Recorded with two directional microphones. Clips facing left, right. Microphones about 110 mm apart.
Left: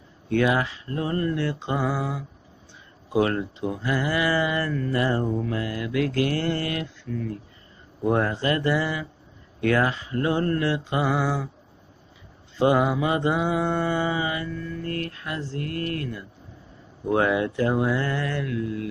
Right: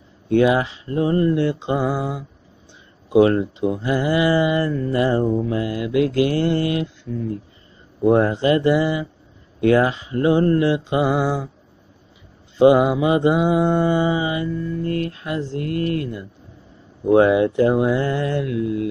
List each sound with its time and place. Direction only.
0.3 s speech: 25° right (ahead or behind)
12.5 s speech: 15° right (ahead or behind)